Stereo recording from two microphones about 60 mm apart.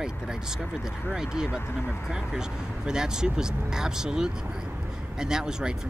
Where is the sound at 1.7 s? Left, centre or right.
Left.